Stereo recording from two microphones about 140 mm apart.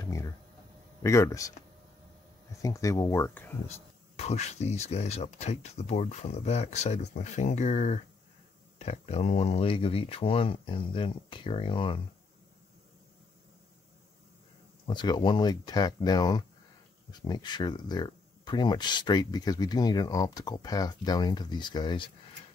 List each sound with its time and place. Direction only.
0.0 s a sound: 20° left (ahead or behind)
1.0 s speech: 20° left (ahead or behind)
2.6 s speech: 25° left (ahead or behind)
4.2 s speech: 50° left (ahead or behind)
14.9 s speech: 30° left (ahead or behind)